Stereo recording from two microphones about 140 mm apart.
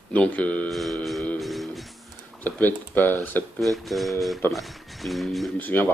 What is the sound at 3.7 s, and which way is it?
Speech, centre (ahead or behind).